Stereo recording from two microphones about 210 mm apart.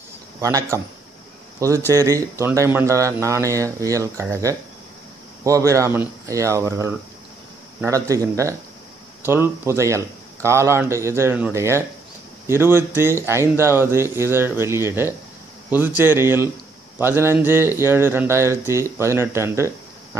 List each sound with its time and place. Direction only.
0.4 s speech: 15° right (ahead or behind)
1.9 s speech: 15° right (ahead or behind)